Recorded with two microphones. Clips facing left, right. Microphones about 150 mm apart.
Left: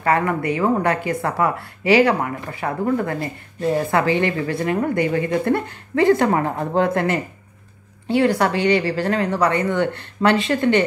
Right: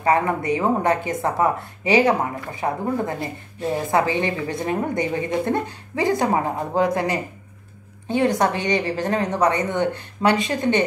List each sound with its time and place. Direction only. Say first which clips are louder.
0.0 s a woman's voice: even; 20° right (ahead or behind)
5.0 s a woman's voice: left 4 dB; 55° left (ahead or behind)
5.3 s a woman's voice: left 2 dB; 15° right (ahead or behind)